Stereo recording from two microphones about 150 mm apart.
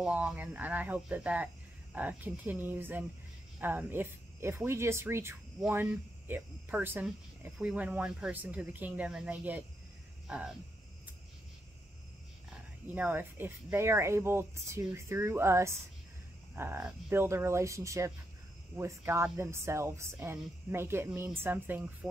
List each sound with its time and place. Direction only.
0.0 s speech: 10° right (ahead or behind)
12.8 s speech: 10° right (ahead or behind)